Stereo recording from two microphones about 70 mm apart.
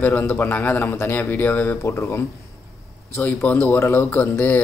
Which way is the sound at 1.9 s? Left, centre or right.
Left.